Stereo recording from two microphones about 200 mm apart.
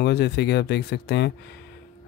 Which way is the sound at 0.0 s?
55° left (ahead or behind).